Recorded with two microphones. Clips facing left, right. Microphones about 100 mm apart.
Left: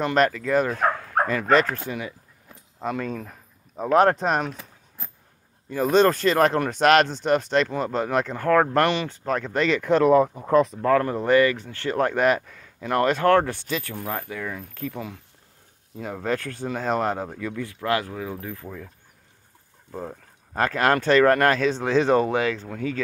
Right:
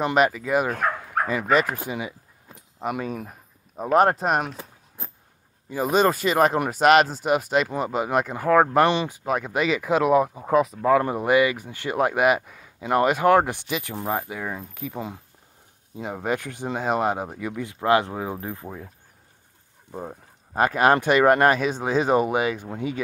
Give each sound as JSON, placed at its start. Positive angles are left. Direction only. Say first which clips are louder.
{"t": 0.0, "sound": "speech", "louder": "even", "side_deg": -10}
{"t": 4.6, "sound": "a sound", "louder": "right 3 dB", "side_deg": -25}
{"t": 5.7, "sound": "speech", "louder": "left 2 dB", "side_deg": -10}
{"t": 19.9, "sound": "speech", "louder": "left 1 dB", "side_deg": -15}